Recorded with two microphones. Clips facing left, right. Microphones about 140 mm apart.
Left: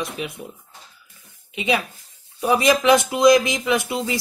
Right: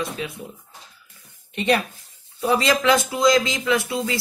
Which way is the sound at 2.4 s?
15° left (ahead or behind).